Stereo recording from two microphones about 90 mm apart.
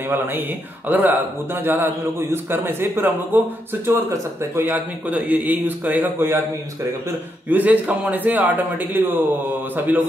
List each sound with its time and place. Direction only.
0.1 s speech: 25° right (ahead or behind)
7.4 s speech: 20° right (ahead or behind)